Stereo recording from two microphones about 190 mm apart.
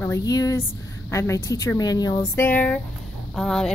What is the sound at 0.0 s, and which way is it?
A woman's voice, 15° left (ahead or behind).